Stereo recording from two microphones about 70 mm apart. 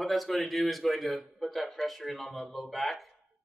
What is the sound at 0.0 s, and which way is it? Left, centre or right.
A man's voice, centre.